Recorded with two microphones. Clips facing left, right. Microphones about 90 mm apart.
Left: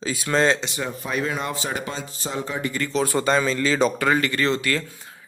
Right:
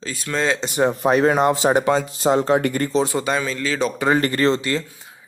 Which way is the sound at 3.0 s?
10° right (ahead or behind).